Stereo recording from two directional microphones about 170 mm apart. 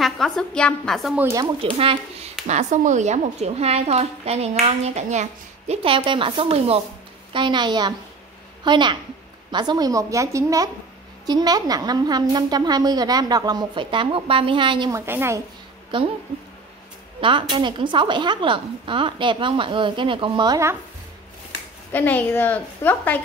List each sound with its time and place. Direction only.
0.0 s a woman's voice: 5° left (ahead or behind)
1.6 s speech: 35° right (ahead or behind)
2.4 s a woman's voice: 45° right (ahead or behind); by 15.0 s 30° right (ahead or behind)
15.0 s a woman's voice: 15° right (ahead or behind)
15.9 s a woman's voice: 30° right (ahead or behind)
17.2 s a woman's voice: 30° right (ahead or behind)
21.9 s a woman's voice: 10° left (ahead or behind)